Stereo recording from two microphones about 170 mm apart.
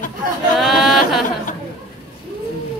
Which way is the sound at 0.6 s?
Centre (ahead or behind).